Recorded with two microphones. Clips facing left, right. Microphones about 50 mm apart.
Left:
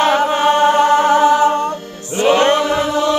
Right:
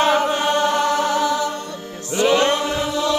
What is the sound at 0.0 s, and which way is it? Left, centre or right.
A capella, left.